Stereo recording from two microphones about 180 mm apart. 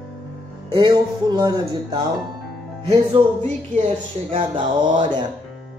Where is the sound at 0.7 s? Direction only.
25° right (ahead or behind).